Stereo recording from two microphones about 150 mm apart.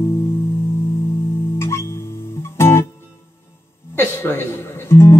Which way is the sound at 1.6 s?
15° left (ahead or behind).